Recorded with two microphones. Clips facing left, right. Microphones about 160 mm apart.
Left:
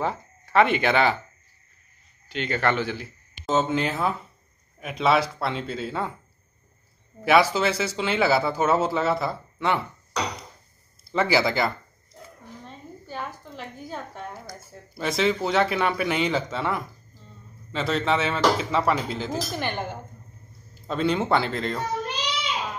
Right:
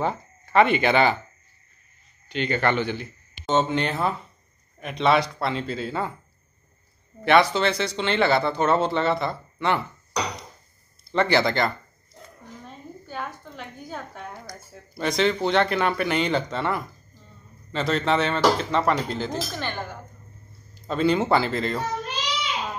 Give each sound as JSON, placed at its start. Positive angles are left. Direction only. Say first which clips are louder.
{"t": 0.0, "sound": "speech", "louder": "right 1 dB", "side_deg": 0}
{"t": 2.2, "sound": "a woman's voice", "louder": "right 1 dB", "side_deg": 0}
{"t": 7.2, "sound": "a woman's voice", "louder": "right 1 dB", "side_deg": 5}
{"t": 11.1, "sound": "a woman's voice", "louder": "right 1 dB", "side_deg": 5}
{"t": 19.6, "sound": "speech", "louder": "left 2 dB", "side_deg": 20}
{"t": 20.7, "sound": "a woman's voice", "louder": "right 2 dB", "side_deg": 0}